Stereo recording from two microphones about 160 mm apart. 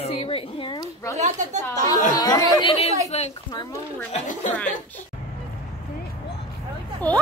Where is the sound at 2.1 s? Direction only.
25° left (ahead or behind).